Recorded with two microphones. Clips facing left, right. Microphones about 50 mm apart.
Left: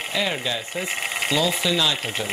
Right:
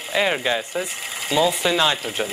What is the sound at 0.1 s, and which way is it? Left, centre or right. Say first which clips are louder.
Speech: right 6 dB; right.